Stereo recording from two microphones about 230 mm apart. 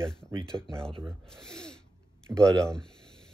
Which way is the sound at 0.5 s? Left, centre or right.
Centre.